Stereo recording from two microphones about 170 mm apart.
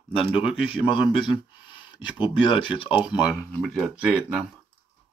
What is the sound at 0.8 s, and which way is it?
Speech, 30° left (ahead or behind).